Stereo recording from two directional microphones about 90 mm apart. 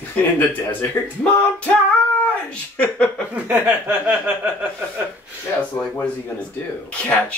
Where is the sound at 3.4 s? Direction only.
20° right (ahead or behind).